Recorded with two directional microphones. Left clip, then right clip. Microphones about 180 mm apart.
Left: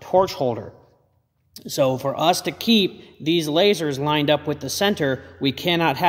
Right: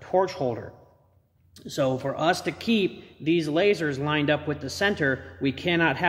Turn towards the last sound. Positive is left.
turn(degrees=40)  # may be behind; listen again after turning